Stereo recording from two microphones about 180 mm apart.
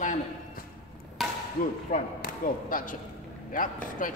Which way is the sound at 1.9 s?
50° left (ahead or behind).